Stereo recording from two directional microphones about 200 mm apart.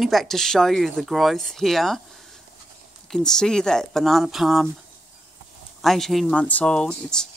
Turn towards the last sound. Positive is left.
turn(degrees=5)  # may be behind; listen again after turning